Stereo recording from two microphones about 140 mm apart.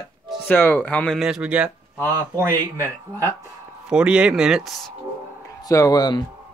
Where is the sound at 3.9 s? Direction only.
5° right (ahead or behind).